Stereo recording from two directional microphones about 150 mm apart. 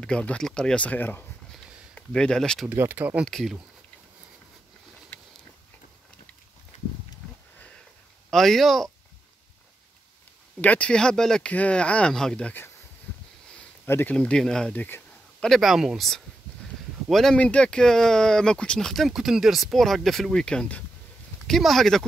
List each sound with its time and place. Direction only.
0.0 s speech: 5° left (ahead or behind)
2.7 s speech: 15° right (ahead or behind)
3.3 s speech: centre (ahead or behind)
6.7 s horse: 55° left (ahead or behind)
8.3 s speech: centre (ahead or behind)
10.6 s speech: 10° left (ahead or behind)
13.8 s speech: 15° left (ahead or behind)